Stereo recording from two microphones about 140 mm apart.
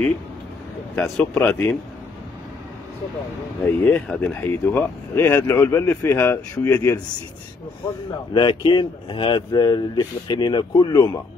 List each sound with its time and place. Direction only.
0.9 s speech: 5° left (ahead or behind)
3.6 s speech: 10° left (ahead or behind)
8.3 s speech: 35° left (ahead or behind)